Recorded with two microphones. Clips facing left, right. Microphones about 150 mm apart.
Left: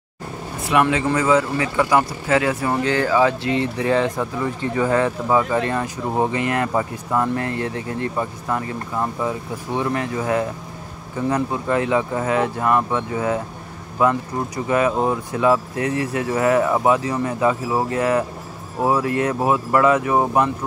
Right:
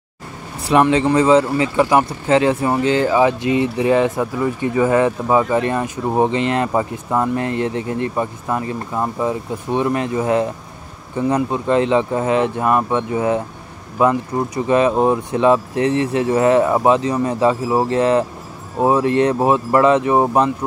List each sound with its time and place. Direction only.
0.7 s speech: 30° right (ahead or behind)